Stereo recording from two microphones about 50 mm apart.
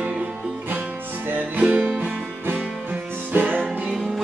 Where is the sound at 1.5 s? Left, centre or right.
Right.